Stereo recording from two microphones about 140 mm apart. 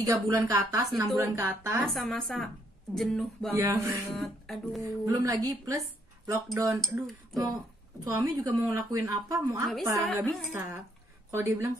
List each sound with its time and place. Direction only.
0.0 s a woman's voice: 25° right (ahead or behind)
1.9 s a woman's voice: centre (ahead or behind)
3.5 s a woman's voice: 20° right (ahead or behind)
4.2 s a woman's voice: centre (ahead or behind)
5.0 s a woman's voice: 25° right (ahead or behind)
10.0 s a woman's voice: 5° left (ahead or behind)
10.5 s a woman's voice: 20° right (ahead or behind)